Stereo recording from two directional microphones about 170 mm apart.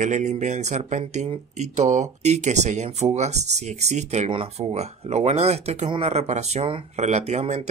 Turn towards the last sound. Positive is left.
turn(degrees=-40)  # may be behind; listen again after turning